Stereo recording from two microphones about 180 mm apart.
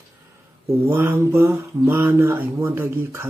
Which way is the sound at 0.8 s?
15° right (ahead or behind).